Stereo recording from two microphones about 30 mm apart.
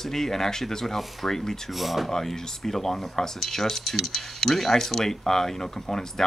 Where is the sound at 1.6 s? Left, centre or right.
Centre.